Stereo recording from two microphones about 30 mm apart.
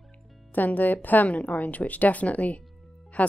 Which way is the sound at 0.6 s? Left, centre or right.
Left.